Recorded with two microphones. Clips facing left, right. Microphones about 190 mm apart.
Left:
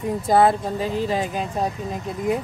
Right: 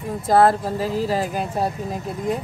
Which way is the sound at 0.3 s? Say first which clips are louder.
Right 1 dB; centre (ahead or behind).